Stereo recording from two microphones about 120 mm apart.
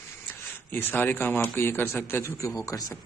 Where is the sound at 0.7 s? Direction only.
15° left (ahead or behind).